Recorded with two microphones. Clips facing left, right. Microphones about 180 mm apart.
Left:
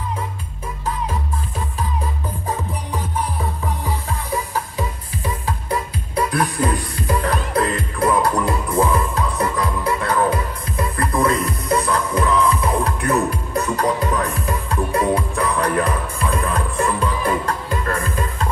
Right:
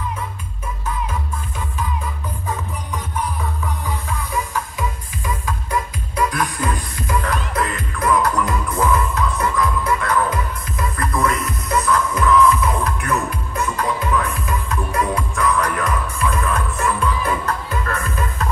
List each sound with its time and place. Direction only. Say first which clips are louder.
2.4 s music: left 2 dB; 35° left (ahead or behind)